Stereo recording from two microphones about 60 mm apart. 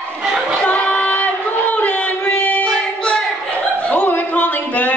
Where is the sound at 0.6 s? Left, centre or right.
Left.